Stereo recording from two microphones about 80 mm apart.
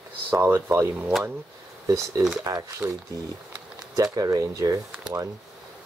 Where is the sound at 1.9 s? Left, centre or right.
Right.